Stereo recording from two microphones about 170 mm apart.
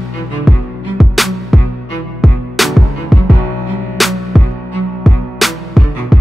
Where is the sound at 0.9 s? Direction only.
Centre (ahead or behind).